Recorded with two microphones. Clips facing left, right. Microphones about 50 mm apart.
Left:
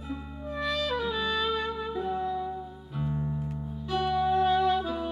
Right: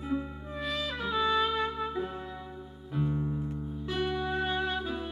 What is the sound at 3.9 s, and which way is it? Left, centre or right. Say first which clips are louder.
Music: left 6 dB; centre.